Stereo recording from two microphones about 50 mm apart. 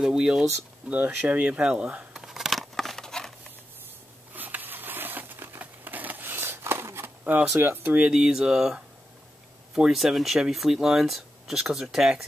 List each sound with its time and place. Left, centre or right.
0.0 s speech: centre
0.8 s speech: right
1.3 s speech: right
2.1 s a sound: centre
2.7 s patter: centre
4.3 s a sound: right
7.5 s speech: right
8.1 s speech: centre
9.9 s speech: centre